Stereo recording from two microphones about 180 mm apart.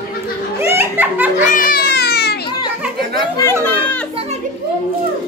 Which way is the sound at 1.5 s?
50° left (ahead or behind).